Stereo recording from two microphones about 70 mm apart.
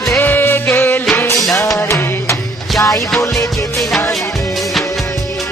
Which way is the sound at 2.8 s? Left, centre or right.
Left.